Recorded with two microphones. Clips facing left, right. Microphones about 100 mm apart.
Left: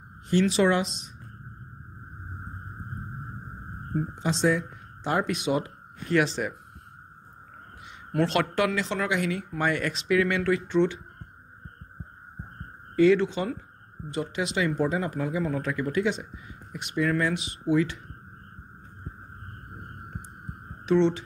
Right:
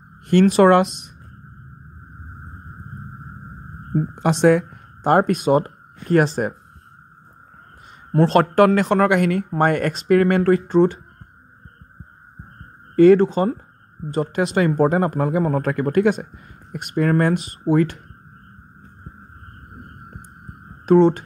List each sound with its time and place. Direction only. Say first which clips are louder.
0.3 s speech: right 9 dB; 55° right (ahead or behind)
3.9 s speech: right 8 dB; 60° right (ahead or behind)
8.1 s speech: right 9 dB; 35° right (ahead or behind)
12.9 s speech: right 8 dB; 45° right (ahead or behind)
20.8 s speech: right 8 dB; 45° right (ahead or behind)